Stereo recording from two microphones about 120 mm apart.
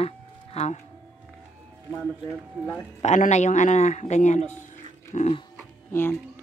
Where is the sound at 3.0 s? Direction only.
75° left (ahead or behind).